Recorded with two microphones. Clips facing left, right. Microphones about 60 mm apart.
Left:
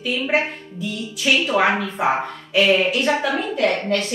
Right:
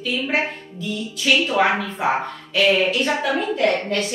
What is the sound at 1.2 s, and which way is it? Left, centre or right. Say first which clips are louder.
A woman's voice: even; centre.